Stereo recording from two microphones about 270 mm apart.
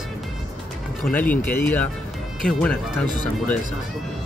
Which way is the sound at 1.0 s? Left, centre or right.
Centre.